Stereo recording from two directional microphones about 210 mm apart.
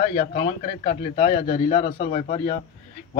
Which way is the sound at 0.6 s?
30° left (ahead or behind).